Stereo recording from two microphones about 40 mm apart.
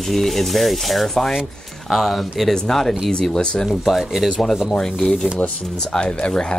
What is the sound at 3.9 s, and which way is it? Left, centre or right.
Speech, centre.